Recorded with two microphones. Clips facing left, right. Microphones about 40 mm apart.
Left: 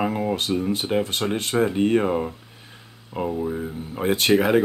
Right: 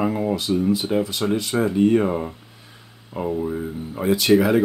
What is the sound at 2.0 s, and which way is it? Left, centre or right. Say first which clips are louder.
Speech: even; centre.